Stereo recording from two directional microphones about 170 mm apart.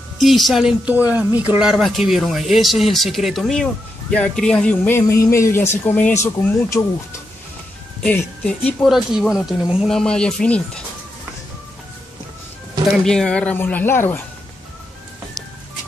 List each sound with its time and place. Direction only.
0.2 s speech: centre (ahead or behind)
12.9 s speech: 5° left (ahead or behind)